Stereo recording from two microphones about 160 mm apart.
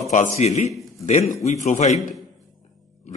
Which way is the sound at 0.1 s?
45° left (ahead or behind).